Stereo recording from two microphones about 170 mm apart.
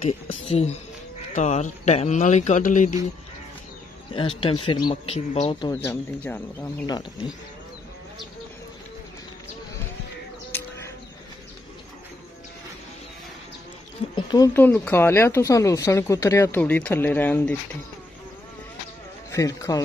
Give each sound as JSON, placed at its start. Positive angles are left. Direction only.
{"t": 0.3, "sound": "speech", "side_deg": 35}
{"t": 4.1, "sound": "speech", "side_deg": 30}
{"t": 5.9, "sound": "speech", "side_deg": 10}
{"t": 6.9, "sound": "speech", "side_deg": 25}
{"t": 14.1, "sound": "speech", "side_deg": 25}
{"t": 14.5, "sound": "speech", "side_deg": 10}
{"t": 19.3, "sound": "speech", "side_deg": 20}